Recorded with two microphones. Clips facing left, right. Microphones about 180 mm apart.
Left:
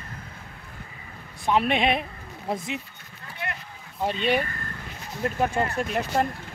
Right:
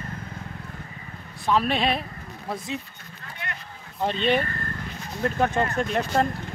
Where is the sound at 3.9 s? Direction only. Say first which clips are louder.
Right 1 dB; 10° left (ahead or behind).